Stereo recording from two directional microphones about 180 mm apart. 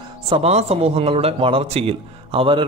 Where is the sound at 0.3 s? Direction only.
35° right (ahead or behind).